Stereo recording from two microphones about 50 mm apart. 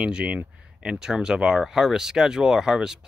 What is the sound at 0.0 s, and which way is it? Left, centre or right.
Speech, centre.